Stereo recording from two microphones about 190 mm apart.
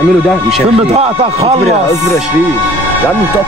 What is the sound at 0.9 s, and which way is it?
Speech, 35° right (ahead or behind).